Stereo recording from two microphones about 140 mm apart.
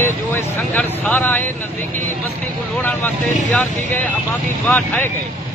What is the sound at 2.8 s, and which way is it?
Speech, 15° left (ahead or behind).